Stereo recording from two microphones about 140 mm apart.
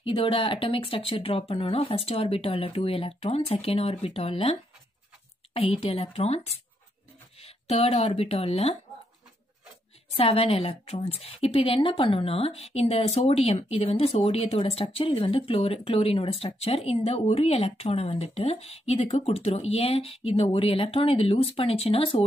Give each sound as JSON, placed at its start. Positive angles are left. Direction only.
{"t": 0.0, "sound": "a woman's voice", "side_deg": 40}
{"t": 10.1, "sound": "a woman's voice", "side_deg": 45}